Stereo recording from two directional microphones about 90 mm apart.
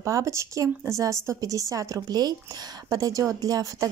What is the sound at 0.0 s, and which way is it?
A woman's voice, 35° right (ahead or behind).